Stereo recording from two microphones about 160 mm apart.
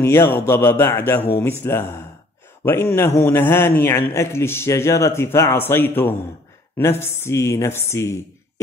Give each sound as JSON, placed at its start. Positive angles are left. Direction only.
{"t": 0.0, "sound": "a man's voice", "side_deg": 15}